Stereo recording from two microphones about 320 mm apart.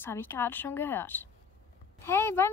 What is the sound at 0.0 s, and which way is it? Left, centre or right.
Speech, centre.